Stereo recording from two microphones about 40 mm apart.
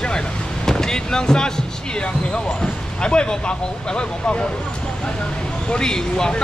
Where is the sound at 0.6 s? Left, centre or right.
Centre.